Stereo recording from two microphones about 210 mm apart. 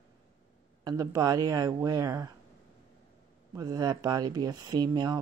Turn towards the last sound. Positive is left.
turn(degrees=-20)  # may be behind; listen again after turning